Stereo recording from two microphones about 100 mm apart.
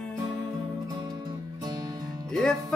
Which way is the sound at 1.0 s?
45° right (ahead or behind).